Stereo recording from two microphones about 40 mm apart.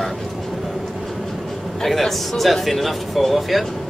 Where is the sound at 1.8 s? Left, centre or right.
Centre.